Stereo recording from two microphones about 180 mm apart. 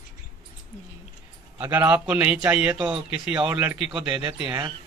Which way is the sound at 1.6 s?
10° right (ahead or behind).